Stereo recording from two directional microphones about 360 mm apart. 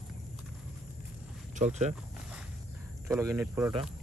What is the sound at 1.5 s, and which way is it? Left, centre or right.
Speech, centre.